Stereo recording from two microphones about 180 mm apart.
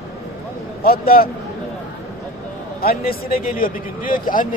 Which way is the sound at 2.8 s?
55° left (ahead or behind).